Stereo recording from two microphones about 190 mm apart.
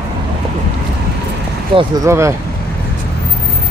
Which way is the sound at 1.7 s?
25° right (ahead or behind).